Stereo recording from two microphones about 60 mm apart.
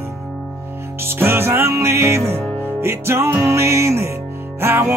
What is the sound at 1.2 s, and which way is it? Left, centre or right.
Music, right.